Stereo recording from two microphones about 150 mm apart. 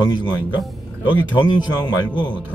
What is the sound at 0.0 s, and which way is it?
Speech, 30° left (ahead or behind).